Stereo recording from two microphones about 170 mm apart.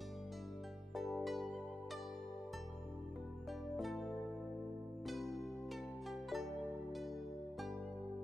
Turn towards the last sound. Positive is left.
turn(degrees=0)  # may be behind; listen again after turning